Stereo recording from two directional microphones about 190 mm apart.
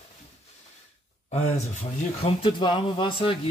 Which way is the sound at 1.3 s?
35° left (ahead or behind).